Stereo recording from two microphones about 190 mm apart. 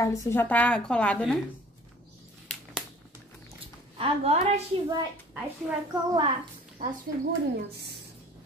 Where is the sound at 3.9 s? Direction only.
30° right (ahead or behind).